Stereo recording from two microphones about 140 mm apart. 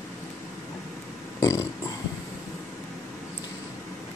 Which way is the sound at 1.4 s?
25° left (ahead or behind).